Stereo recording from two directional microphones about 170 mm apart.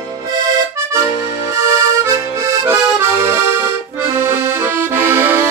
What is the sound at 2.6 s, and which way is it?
Accordion, 15° right (ahead or behind).